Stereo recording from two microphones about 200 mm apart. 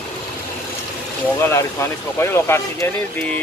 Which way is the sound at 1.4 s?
15° left (ahead or behind).